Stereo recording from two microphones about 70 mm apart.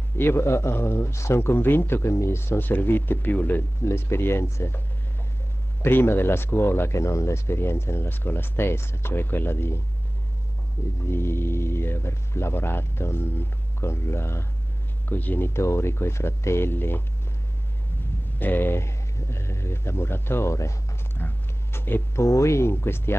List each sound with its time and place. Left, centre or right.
0.2 s speech: left
3.8 s speech: left
11.1 s speech: left
15.0 s speech: left
18.4 s speech: left
21.2 s a sound: left
22.2 s speech: left